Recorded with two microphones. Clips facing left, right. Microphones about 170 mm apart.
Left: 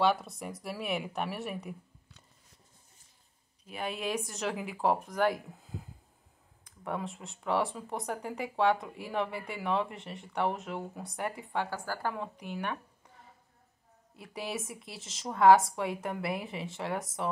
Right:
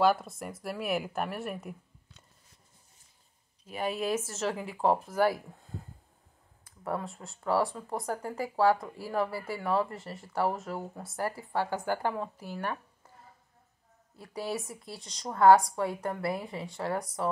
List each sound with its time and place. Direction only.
0.0 s speech: centre (ahead or behind)
3.6 s speech: centre (ahead or behind)
11.7 s a woman's voice: 20° right (ahead or behind)
12.4 s speech: 5° right (ahead or behind)
14.2 s speech: centre (ahead or behind)